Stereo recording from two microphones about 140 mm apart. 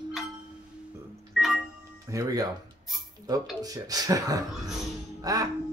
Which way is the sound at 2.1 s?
25° right (ahead or behind).